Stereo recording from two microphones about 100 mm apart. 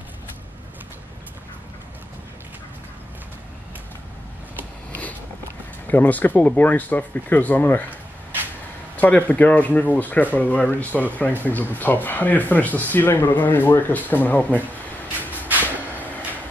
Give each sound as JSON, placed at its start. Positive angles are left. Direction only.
{"t": 5.9, "sound": "speech", "side_deg": 15}
{"t": 8.9, "sound": "speech", "side_deg": 15}
{"t": 15.4, "sound": "vehicle", "side_deg": -15}